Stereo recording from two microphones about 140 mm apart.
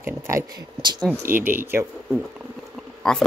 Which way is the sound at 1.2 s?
15° right (ahead or behind).